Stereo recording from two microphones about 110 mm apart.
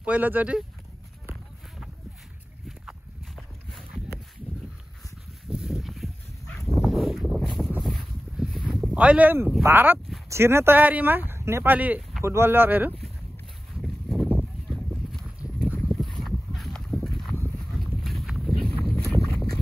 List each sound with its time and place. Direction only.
0.0 s speech: 15° right (ahead or behind)
5.5 s dog: 5° right (ahead or behind)
6.8 s wind: centre (ahead or behind)
7.8 s a sound: centre (ahead or behind)
8.9 s speech: 10° right (ahead or behind)
14.0 s a sound: centre (ahead or behind)
14.7 s clip-clop: centre (ahead or behind)
16.2 s a sound: centre (ahead or behind)
18.9 s horse: 5° left (ahead or behind)